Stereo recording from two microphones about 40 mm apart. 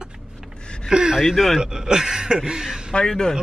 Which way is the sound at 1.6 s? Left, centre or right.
Centre.